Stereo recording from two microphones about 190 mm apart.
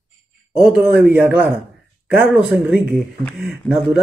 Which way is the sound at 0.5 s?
5° right (ahead or behind).